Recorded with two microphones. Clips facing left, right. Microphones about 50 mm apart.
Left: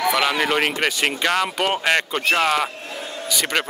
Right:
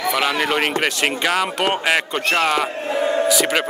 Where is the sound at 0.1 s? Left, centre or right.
Centre.